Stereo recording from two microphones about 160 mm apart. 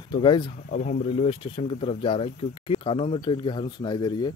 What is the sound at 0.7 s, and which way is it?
Speech, 55° left (ahead or behind).